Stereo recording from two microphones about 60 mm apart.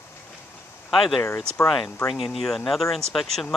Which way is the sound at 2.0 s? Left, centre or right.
Left.